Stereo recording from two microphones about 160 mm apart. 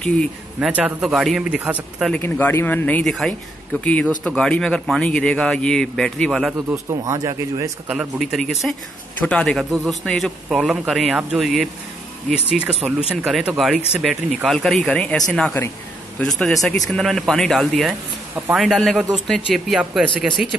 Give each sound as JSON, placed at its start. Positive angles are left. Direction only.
{"t": 0.0, "sound": "a man's voice", "side_deg": 5}
{"t": 0.6, "sound": "a man's voice", "side_deg": -5}
{"t": 2.1, "sound": "a man's voice", "side_deg": 10}
{"t": 6.7, "sound": "speech", "side_deg": -20}
{"t": 7.9, "sound": "a man's voice", "side_deg": -5}